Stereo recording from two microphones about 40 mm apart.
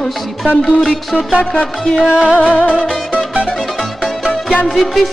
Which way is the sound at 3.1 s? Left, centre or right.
Right.